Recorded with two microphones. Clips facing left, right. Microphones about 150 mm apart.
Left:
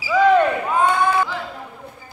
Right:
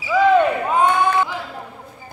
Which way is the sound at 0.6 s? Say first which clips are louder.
Right 1 dB; 20° right (ahead or behind).